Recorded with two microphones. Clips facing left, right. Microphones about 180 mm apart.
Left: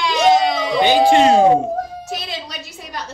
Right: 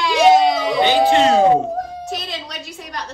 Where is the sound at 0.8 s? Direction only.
15° left (ahead or behind).